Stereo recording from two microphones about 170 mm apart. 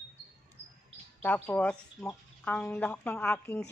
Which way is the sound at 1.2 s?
10° left (ahead or behind).